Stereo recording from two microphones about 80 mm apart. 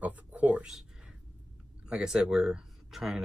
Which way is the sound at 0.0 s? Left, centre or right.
Centre.